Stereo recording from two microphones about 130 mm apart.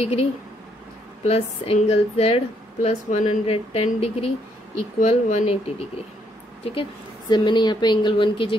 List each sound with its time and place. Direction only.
0.0 s speech: 50° left (ahead or behind)
3.5 s speech: 50° left (ahead or behind)